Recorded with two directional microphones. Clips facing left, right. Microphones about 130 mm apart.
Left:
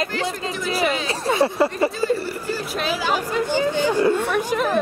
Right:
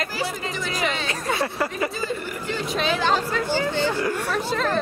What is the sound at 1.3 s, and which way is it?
Speech, 25° left (ahead or behind).